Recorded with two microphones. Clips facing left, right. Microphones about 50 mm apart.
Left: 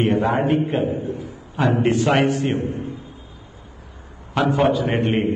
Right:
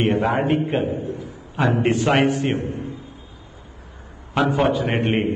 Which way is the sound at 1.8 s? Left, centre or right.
Right.